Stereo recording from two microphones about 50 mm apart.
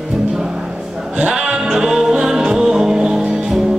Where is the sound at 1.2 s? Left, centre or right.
Centre.